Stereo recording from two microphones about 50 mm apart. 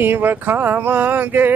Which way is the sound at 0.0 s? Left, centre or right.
Right.